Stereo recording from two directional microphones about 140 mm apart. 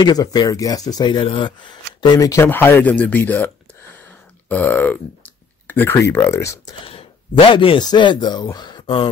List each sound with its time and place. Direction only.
0.0 s speech: 30° left (ahead or behind)
6.9 s speech: 40° left (ahead or behind)